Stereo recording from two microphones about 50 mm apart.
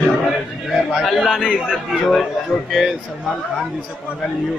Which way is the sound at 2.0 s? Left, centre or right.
Centre.